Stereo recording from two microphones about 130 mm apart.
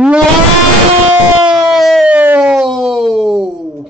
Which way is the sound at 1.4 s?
5° right (ahead or behind).